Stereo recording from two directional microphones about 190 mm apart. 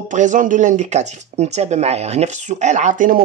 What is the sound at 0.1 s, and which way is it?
Speech, 40° right (ahead or behind).